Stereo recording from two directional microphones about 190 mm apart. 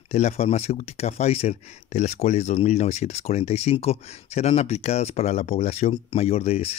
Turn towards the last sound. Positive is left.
turn(degrees=30)  # may be behind; listen again after turning